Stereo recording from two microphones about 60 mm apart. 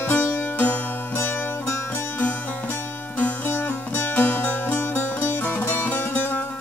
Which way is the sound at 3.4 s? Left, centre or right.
Left.